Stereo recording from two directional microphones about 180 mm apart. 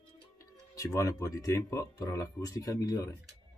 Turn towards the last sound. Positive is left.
turn(degrees=20)  # may be behind; listen again after turning